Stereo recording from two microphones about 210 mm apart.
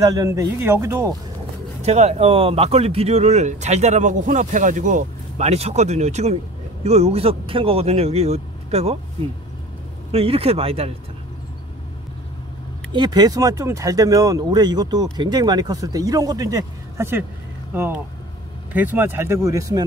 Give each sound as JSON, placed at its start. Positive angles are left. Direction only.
{"t": 0.0, "sound": "speech", "side_deg": -15}
{"t": 1.8, "sound": "speech", "side_deg": -30}
{"t": 10.1, "sound": "speech", "side_deg": -30}
{"t": 12.9, "sound": "speech", "side_deg": -20}